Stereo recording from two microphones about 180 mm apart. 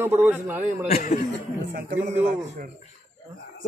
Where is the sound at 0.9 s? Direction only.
45° left (ahead or behind).